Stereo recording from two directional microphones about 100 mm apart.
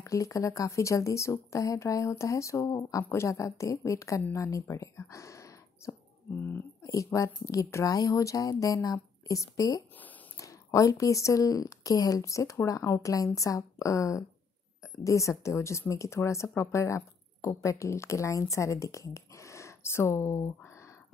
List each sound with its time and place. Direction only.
0.0 s speech: 35° left (ahead or behind)
6.3 s speech: 20° left (ahead or behind)
6.8 s speech: 35° left (ahead or behind)